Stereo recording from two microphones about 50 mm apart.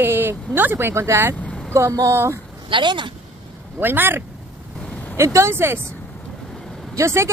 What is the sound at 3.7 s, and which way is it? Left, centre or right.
Speech, right.